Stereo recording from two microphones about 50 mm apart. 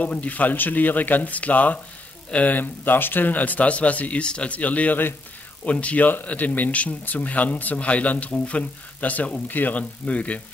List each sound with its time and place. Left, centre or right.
0.0 s speech: left